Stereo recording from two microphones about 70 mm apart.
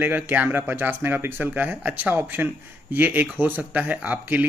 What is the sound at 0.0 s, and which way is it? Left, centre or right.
Speech, right.